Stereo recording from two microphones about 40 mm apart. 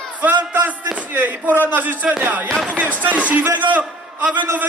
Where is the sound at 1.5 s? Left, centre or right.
Right.